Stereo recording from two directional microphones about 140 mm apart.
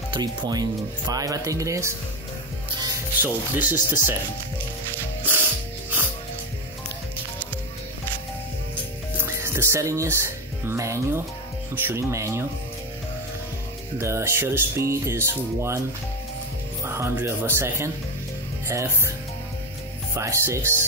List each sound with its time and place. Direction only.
0.1 s speech: 30° right (ahead or behind)
3.2 s speech: 15° right (ahead or behind)
9.2 s speech: 20° right (ahead or behind)
13.9 s speech: 20° right (ahead or behind)
16.8 s speech: 20° right (ahead or behind)
20.2 s speech: 20° right (ahead or behind)